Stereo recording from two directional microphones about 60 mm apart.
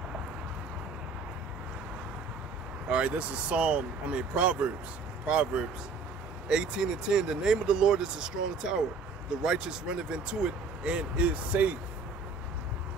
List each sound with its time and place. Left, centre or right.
2.9 s speech: right